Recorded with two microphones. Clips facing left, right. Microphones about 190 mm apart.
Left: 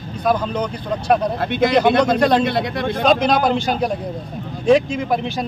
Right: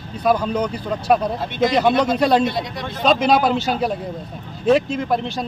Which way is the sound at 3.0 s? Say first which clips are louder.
Even; 5° right (ahead or behind).